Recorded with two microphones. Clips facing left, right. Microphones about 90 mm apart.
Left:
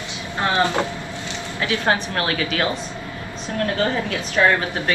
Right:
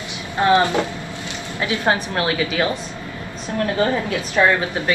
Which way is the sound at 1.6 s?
20° right (ahead or behind).